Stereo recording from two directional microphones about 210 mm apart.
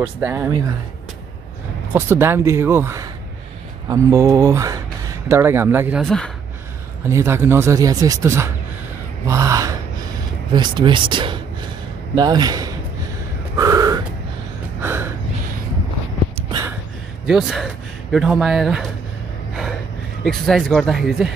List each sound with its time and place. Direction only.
0.0 s speech: 10° right (ahead or behind)
2.0 s speech: 10° right (ahead or behind)
7.1 s speech: 15° right (ahead or behind)
9.3 s gasp: 15° right (ahead or behind)
10.5 s speech: 20° right (ahead or behind)
13.6 s crow: 15° right (ahead or behind)
14.8 s gasp: 10° right (ahead or behind)
17.3 s speech: centre (ahead or behind)
20.2 s speech: centre (ahead or behind)